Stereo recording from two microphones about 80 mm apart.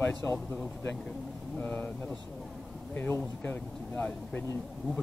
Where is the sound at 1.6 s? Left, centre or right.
Left.